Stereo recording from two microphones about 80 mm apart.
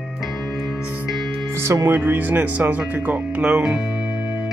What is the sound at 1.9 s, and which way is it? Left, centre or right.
Speech, right.